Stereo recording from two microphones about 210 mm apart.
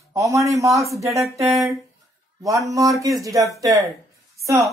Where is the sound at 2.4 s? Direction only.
15° right (ahead or behind).